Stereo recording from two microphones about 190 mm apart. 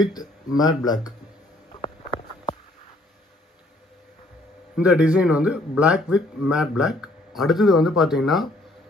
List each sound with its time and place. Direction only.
0.0 s speech: 20° left (ahead or behind)
4.7 s speech: 5° right (ahead or behind)